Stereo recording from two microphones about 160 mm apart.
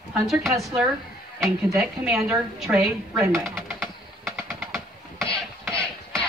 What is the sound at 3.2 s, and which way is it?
Speech, 15° right (ahead or behind).